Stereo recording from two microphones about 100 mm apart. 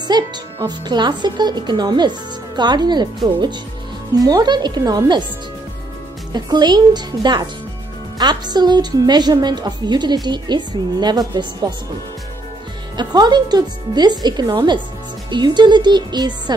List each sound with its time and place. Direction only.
0.1 s a woman's voice: 45° right (ahead or behind)
4.2 s a woman's voice: 40° right (ahead or behind)
6.3 s a woman's voice: 45° right (ahead or behind)
12.9 s a woman's voice: 45° right (ahead or behind)